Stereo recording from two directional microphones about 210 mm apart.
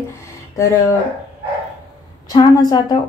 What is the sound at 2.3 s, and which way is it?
Speech, 20° left (ahead or behind).